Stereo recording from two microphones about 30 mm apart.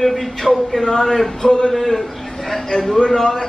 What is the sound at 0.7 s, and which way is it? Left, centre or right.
A man's voice, centre.